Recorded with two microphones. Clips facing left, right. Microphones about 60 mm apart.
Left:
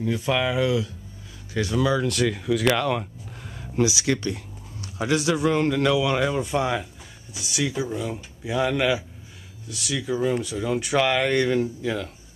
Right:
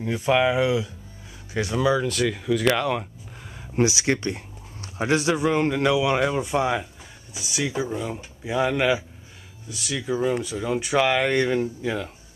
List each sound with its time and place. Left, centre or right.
0.0 s speech: centre
1.8 s speech: centre
2.0 s speech: centre
3.7 s speech: right
5.4 s speech: centre